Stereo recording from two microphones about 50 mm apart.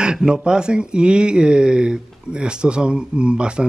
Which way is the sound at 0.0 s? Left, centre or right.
Centre.